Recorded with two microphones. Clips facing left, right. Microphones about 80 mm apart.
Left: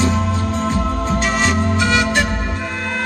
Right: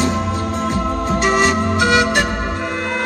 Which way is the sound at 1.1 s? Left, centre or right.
Right.